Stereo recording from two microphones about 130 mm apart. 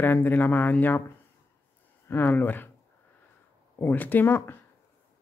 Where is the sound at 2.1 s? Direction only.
15° left (ahead or behind).